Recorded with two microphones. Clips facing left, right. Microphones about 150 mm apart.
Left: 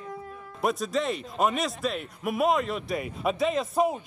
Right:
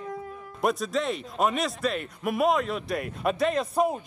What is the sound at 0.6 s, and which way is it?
A man's voice, centre (ahead or behind).